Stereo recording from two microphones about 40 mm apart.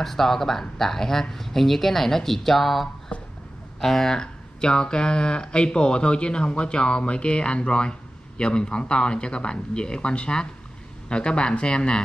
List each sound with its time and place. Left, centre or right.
0.0 s speech: centre
3.1 s a sound: left
3.8 s speech: centre